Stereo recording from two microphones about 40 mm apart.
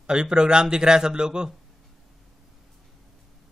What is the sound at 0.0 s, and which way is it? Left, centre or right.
Speech, centre.